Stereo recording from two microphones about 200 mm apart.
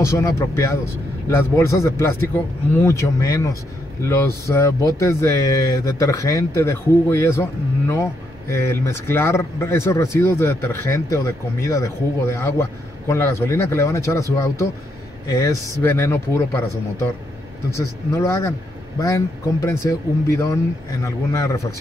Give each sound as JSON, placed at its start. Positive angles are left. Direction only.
{"t": 0.0, "sound": "speech", "side_deg": 15}
{"t": 17.7, "sound": "speech", "side_deg": 15}